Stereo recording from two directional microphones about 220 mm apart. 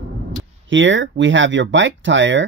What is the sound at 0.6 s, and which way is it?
Speech, 60° right (ahead or behind).